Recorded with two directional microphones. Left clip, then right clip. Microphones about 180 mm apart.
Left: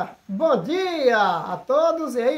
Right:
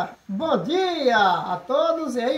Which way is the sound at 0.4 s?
25° left (ahead or behind).